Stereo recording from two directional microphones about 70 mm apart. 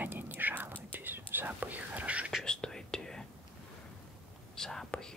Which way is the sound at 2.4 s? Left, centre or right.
Centre.